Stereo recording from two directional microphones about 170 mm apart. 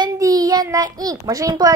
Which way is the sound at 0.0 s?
20° right (ahead or behind).